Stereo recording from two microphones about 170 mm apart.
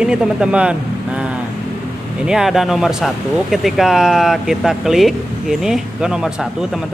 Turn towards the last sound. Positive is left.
turn(degrees=-5)  # may be behind; listen again after turning